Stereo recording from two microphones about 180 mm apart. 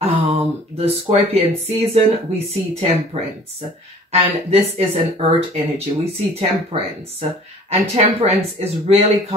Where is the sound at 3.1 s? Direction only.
35° right (ahead or behind).